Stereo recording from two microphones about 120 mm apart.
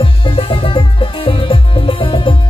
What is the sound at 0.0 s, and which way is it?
Music, 45° left (ahead or behind).